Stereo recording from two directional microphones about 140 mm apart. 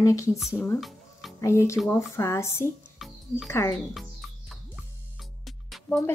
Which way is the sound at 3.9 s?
Centre (ahead or behind).